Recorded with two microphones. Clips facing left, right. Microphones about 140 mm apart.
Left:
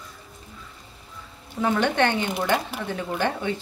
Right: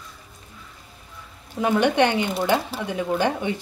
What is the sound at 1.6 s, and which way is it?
Speech, 15° right (ahead or behind).